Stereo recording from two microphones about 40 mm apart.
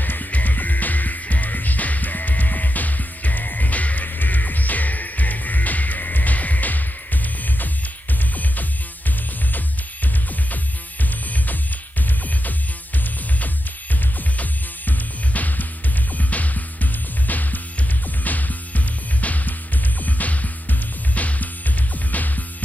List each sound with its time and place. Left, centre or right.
0.0 s music: left
14.4 s music: left